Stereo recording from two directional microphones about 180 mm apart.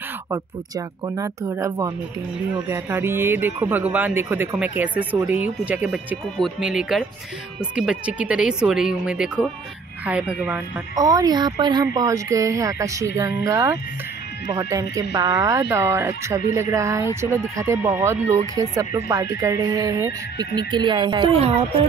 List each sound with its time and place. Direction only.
0.3 s speech: 20° right (ahead or behind)
11.0 s speech: 20° right (ahead or behind)